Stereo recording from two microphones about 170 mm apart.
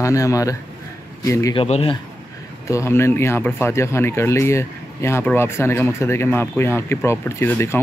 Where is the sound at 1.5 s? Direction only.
35° left (ahead or behind).